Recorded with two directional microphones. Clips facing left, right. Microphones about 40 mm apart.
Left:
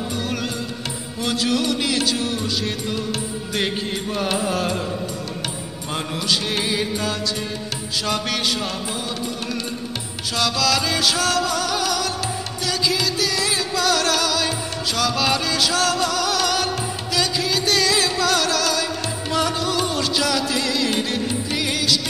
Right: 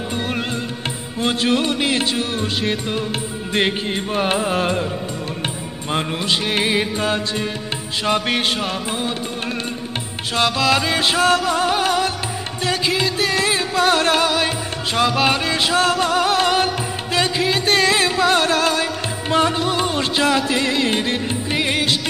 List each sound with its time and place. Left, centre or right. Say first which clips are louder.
0.1 s music: right 2 dB; right
10.3 s music: right 3 dB; right